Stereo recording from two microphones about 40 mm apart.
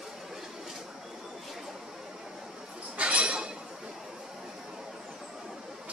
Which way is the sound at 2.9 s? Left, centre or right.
Right.